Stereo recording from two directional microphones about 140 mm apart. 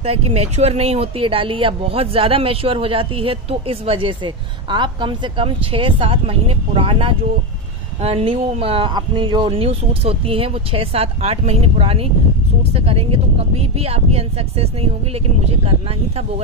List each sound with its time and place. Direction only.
0.0 s speech: 45° right (ahead or behind)